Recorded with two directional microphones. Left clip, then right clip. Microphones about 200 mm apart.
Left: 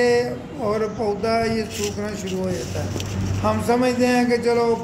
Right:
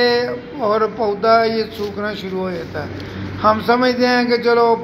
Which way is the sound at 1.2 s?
5° right (ahead or behind).